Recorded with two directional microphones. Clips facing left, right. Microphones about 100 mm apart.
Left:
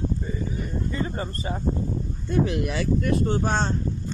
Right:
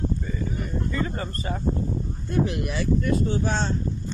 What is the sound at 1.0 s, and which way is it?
Speech, 25° left (ahead or behind).